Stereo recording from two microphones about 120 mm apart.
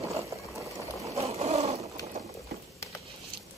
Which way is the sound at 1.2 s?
60° right (ahead or behind).